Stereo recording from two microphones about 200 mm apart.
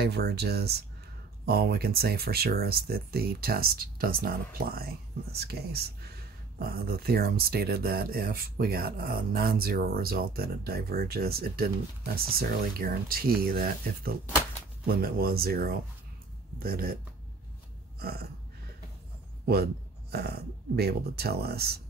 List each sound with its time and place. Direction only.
0.0 s speech: 55° right (ahead or behind)
17.9 s burping: 50° right (ahead or behind)
19.4 s speech: 50° right (ahead or behind)